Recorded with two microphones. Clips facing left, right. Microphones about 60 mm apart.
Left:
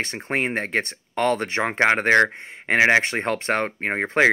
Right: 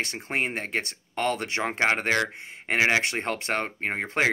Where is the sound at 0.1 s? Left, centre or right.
Left.